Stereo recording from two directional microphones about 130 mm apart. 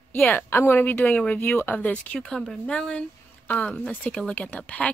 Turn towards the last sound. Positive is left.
turn(degrees=10)  # may be behind; listen again after turning